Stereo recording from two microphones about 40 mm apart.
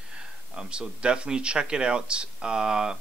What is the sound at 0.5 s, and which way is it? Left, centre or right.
A man's voice, right.